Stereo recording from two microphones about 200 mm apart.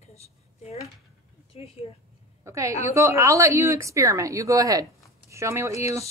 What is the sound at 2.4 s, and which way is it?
A woman's voice, 15° right (ahead or behind).